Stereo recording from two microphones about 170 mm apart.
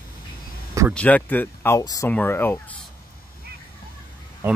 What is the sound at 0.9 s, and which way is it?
Speech, 10° left (ahead or behind).